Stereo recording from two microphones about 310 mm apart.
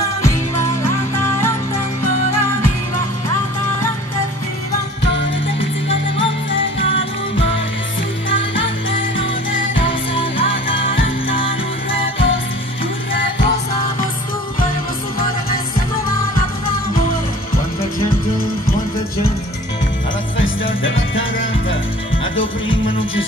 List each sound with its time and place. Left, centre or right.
5.1 s music: left
8.3 s music: left
9.8 s music: centre
20.3 s music: left